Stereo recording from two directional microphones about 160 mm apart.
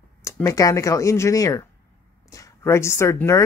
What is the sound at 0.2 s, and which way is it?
A woman's voice, 20° left (ahead or behind).